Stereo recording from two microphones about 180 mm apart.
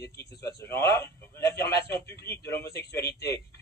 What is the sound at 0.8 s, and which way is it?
Speech, 15° left (ahead or behind).